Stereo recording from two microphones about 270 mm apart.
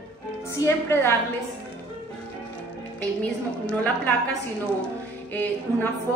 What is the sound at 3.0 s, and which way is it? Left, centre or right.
A woman's voice, centre.